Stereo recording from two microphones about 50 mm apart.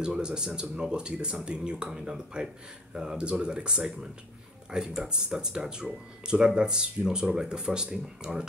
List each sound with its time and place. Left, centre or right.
0.0 s speech: centre